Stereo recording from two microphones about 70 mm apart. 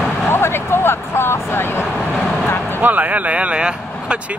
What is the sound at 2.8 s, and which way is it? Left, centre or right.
A man's voice, right.